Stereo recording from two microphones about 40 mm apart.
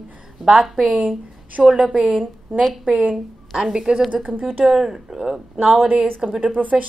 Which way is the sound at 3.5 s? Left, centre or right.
Centre.